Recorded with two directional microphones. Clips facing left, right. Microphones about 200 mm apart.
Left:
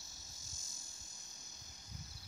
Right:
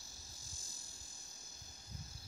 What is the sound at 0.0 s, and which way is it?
Frog, 35° right (ahead or behind).